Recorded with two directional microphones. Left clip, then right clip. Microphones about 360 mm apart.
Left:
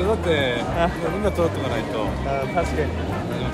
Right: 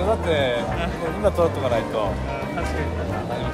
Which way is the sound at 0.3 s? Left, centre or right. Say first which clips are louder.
Even; centre.